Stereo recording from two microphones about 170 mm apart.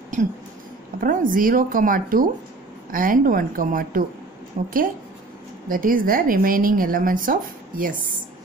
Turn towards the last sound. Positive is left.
turn(degrees=-55)  # may be behind; listen again after turning